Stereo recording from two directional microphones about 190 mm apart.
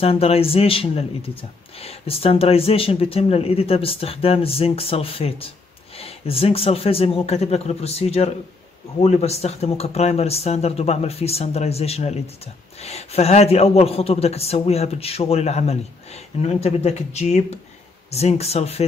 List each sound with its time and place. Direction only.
0.0 s speech: 30° left (ahead or behind)